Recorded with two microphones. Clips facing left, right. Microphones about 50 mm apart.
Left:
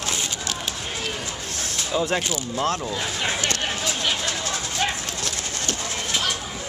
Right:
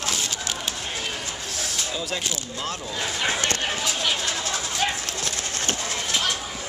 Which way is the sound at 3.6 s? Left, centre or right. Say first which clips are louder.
Even; centre.